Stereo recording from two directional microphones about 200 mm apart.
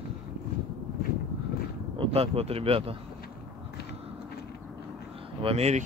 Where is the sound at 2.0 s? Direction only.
30° right (ahead or behind).